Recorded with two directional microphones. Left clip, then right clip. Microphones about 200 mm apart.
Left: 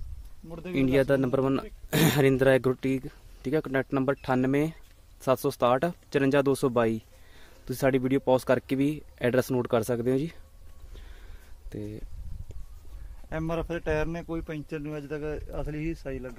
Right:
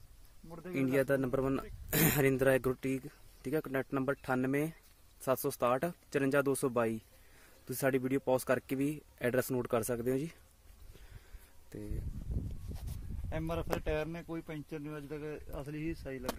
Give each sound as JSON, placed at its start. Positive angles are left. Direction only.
{"t": 0.5, "sound": "speech", "side_deg": 5}
{"t": 0.7, "sound": "speech", "side_deg": -5}
{"t": 13.3, "sound": "a man's voice", "side_deg": -50}